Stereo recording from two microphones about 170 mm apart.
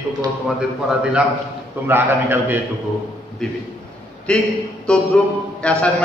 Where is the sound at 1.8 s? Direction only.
15° right (ahead or behind).